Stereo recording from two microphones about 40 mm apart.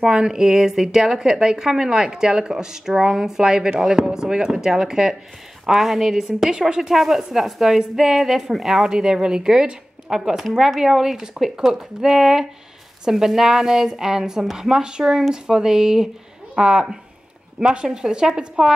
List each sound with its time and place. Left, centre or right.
0.1 s speech: centre
5.7 s speech: centre